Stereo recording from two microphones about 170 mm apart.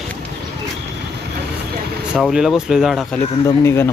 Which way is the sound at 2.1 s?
5° right (ahead or behind).